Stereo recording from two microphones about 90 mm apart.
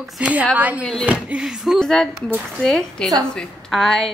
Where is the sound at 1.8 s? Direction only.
5° left (ahead or behind).